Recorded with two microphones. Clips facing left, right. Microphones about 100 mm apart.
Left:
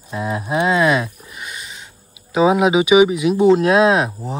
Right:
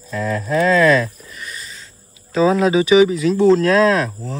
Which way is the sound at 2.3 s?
15° left (ahead or behind).